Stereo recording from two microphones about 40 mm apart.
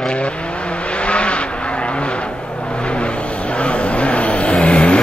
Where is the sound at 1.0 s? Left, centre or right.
Left.